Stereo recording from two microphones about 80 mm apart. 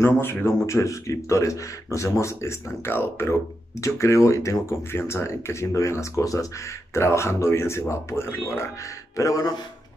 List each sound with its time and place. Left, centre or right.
0.0 s speech: left
3.8 s speech: left